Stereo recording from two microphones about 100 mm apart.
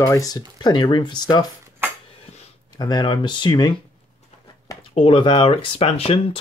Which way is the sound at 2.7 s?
45° left (ahead or behind).